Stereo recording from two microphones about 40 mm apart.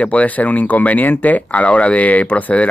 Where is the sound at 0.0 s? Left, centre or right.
Left.